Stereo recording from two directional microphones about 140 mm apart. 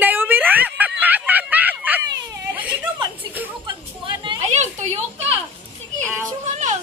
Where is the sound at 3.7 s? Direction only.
35° right (ahead or behind).